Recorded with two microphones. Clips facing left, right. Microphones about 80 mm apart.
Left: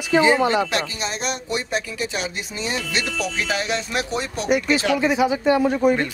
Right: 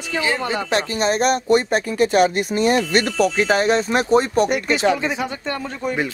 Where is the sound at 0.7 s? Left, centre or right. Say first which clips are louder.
Right 6 dB; right.